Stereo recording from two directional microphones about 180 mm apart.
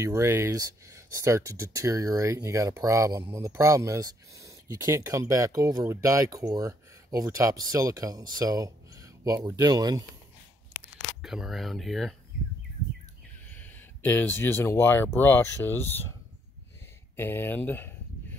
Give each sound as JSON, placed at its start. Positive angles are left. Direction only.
{"t": 0.0, "sound": "speech", "side_deg": -15}
{"t": 11.2, "sound": "speech", "side_deg": 0}
{"t": 13.6, "sound": "speech", "side_deg": 10}
{"t": 17.2, "sound": "speech", "side_deg": 10}